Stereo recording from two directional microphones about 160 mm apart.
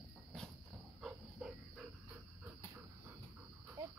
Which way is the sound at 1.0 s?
5° right (ahead or behind).